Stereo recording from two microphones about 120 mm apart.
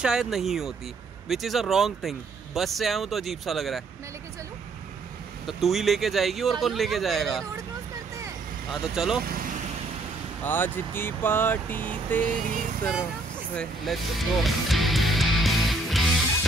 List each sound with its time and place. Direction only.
0.0 s speech: 5° right (ahead or behind)
5.5 s speech: centre (ahead or behind)
8.8 s speech: 5° right (ahead or behind)
10.4 s speech: 15° left (ahead or behind)
13.6 s music: centre (ahead or behind)